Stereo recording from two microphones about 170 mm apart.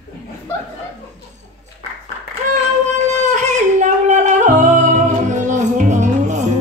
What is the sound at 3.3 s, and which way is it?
Singing, 45° right (ahead or behind).